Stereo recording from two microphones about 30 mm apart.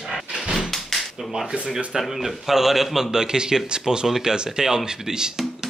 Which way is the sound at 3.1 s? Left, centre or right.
Right.